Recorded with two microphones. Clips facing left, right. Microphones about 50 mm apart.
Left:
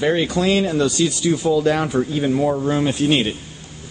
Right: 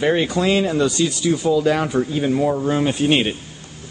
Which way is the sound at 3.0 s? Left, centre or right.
Centre.